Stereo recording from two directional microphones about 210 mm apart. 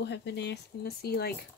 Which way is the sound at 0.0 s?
55° left (ahead or behind).